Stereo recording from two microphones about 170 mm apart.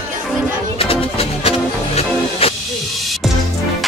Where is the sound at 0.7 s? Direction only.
35° left (ahead or behind).